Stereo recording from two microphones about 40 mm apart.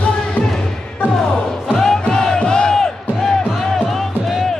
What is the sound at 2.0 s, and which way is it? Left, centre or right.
Crowd, centre.